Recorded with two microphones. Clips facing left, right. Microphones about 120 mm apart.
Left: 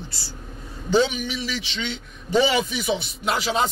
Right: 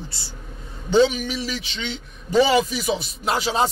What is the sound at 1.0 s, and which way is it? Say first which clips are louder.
A man's voice: right 2 dB; 40° right (ahead or behind).